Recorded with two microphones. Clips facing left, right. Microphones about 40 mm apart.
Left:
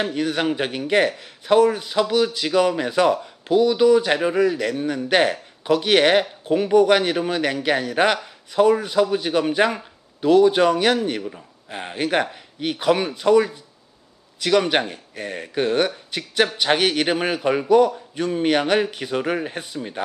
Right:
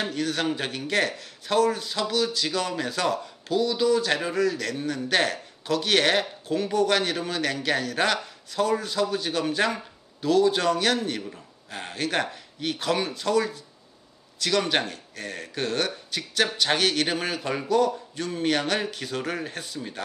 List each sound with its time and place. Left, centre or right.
0.0 s speech: centre